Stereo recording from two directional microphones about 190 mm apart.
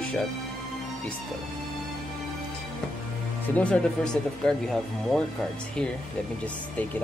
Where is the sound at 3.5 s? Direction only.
5° left (ahead or behind).